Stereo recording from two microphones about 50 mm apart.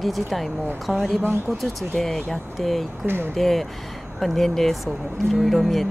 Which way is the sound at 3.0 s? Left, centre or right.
Right.